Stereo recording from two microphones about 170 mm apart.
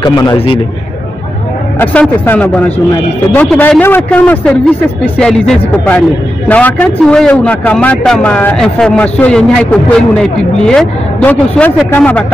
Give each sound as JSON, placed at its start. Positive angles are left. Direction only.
{"t": 0.0, "sound": "a man's voice", "side_deg": 25}
{"t": 1.8, "sound": "a man's voice", "side_deg": 10}